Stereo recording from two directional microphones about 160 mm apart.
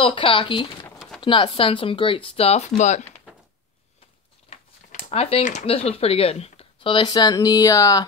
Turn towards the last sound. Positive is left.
turn(degrees=20)  # may be behind; listen again after turning